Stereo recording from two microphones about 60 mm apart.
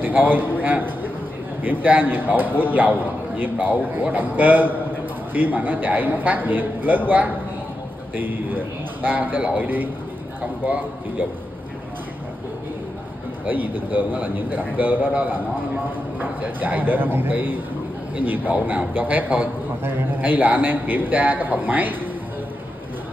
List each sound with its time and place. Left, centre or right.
0.0 s a man's voice: right
13.5 s a man's voice: right